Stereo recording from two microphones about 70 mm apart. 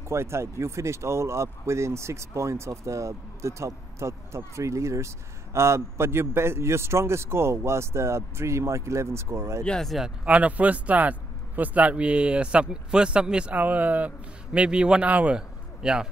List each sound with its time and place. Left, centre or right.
0.1 s speech: right
9.6 s speech: centre
10.2 s a man's voice: centre